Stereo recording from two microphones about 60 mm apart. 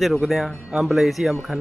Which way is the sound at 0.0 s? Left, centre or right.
Centre.